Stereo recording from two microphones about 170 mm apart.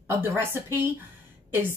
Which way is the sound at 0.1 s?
15° right (ahead or behind).